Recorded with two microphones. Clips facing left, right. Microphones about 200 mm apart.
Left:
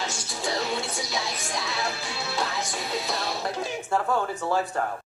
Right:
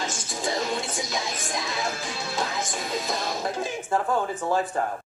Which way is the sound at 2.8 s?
45° right (ahead or behind).